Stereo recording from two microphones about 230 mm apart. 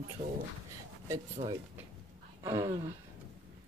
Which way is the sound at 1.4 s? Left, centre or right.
Right.